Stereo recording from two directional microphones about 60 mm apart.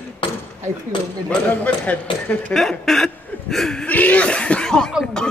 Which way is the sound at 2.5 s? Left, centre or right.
Centre.